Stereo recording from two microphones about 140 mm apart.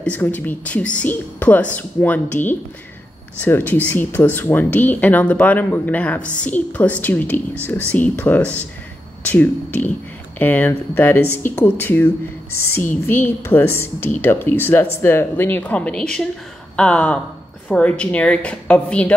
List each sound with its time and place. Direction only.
0.0 s speech: 10° left (ahead or behind)